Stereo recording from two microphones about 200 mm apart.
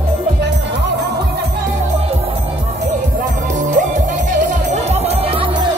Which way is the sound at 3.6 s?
40° right (ahead or behind).